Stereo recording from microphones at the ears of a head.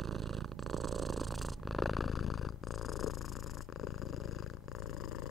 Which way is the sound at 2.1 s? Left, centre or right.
Left.